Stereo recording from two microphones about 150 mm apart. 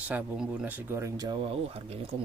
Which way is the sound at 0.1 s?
10° right (ahead or behind).